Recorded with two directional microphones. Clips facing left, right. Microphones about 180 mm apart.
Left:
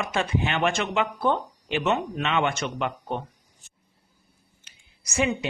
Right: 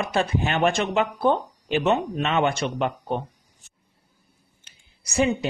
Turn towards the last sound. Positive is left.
turn(degrees=-30)  # may be behind; listen again after turning